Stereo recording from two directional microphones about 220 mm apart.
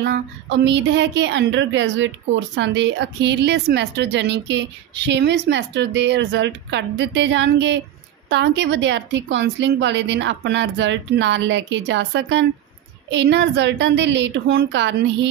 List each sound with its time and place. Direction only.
0.0 s a woman's voice: 50° right (ahead or behind)